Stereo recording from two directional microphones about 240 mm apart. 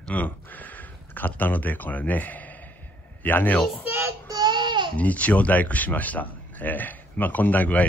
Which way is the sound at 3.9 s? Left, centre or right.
Centre.